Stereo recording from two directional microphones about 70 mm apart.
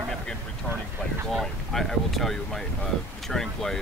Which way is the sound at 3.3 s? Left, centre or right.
Centre.